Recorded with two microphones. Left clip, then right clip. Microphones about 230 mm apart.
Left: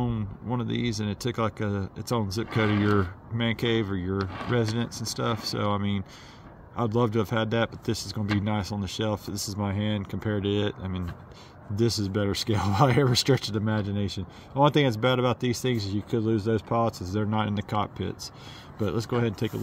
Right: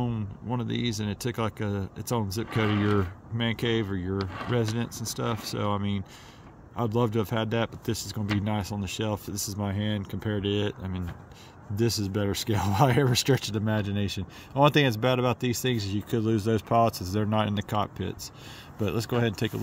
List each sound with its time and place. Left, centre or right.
0.0 s speech: centre